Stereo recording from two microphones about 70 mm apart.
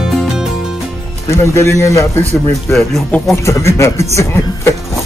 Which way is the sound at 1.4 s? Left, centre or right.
Left.